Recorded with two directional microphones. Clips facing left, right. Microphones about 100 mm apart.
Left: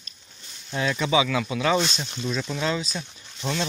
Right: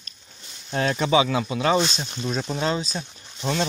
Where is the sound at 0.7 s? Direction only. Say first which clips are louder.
Right 2 dB; 45° right (ahead or behind).